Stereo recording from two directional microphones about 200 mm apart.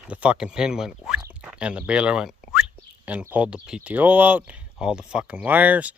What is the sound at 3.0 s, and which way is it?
Speech, 5° right (ahead or behind).